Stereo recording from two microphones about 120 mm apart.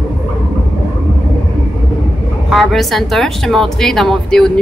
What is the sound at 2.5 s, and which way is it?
A woman's voice, centre (ahead or behind).